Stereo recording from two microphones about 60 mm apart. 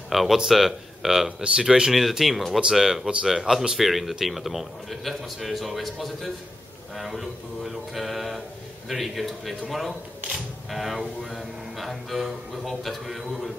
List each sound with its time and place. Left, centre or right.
0.1 s speech: centre
3.1 s speech: centre
3.3 s speech: centre